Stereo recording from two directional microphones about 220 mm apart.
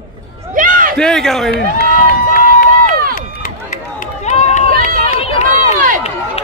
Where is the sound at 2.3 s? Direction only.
40° left (ahead or behind).